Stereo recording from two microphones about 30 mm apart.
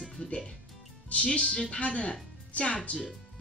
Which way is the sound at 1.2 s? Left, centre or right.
Left.